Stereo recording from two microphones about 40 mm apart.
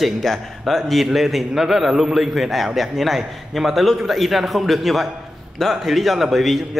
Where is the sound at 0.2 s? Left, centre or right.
Centre.